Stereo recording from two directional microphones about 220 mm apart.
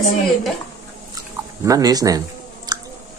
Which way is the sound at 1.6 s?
15° right (ahead or behind).